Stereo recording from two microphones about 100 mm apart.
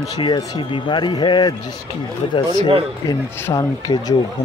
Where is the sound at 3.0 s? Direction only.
35° left (ahead or behind).